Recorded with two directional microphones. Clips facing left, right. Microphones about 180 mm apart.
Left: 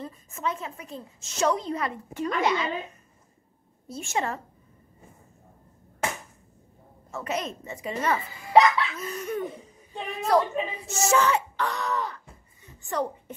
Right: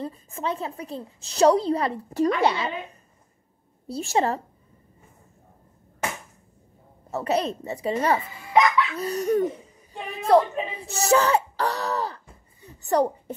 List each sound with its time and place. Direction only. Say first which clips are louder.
0.0 s speech: right 2 dB; 30° right (ahead or behind)
3.8 s speech: right 6 dB; 35° right (ahead or behind)
7.1 s speech: right 6 dB; 35° right (ahead or behind)
8.5 s laughter: left 2 dB; 35° left (ahead or behind)
8.9 s speech: right 8 dB; 35° right (ahead or behind)
12.6 s a sound: right 7 dB; 40° right (ahead or behind)